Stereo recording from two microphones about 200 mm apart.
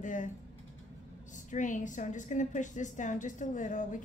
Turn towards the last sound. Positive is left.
turn(degrees=40)  # may be behind; listen again after turning